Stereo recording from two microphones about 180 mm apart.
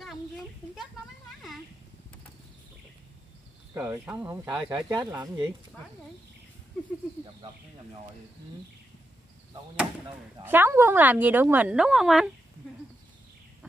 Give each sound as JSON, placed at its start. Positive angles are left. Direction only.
{"t": 3.7, "sound": "a woman's voice", "side_deg": -10}
{"t": 4.8, "sound": "speech", "side_deg": -20}
{"t": 10.4, "sound": "a woman's voice", "side_deg": -10}